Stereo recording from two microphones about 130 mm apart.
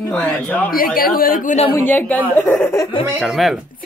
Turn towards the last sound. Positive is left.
turn(degrees=0)  # may be behind; listen again after turning